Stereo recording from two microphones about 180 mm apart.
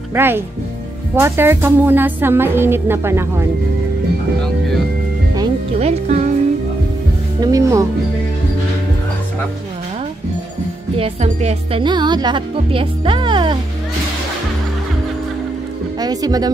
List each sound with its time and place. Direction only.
0.1 s a woman's voice: 10° right (ahead or behind)
5.8 s speech: 40° right (ahead or behind)
7.3 s speech: 20° right (ahead or behind)
11.0 s speech: 35° right (ahead or behind)
16.0 s speech: 20° right (ahead or behind)